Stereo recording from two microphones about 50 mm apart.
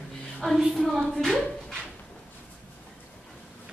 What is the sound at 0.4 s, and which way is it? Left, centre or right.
Speech, centre.